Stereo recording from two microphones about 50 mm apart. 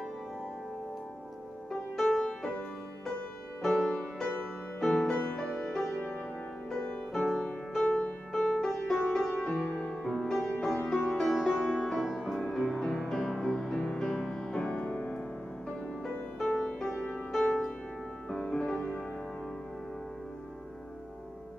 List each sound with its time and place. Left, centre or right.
2.0 s music: centre
3.6 s music: centre
5.0 s music: centre
8.7 s music: centre
9.0 s music: centre
10.0 s music: centre; by 15.1 s left
16.3 s music: centre